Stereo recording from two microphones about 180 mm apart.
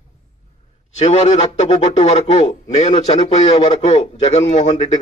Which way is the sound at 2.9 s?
25° left (ahead or behind).